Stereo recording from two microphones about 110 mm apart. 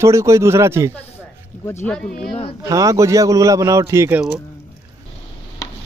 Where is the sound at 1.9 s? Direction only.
10° left (ahead or behind).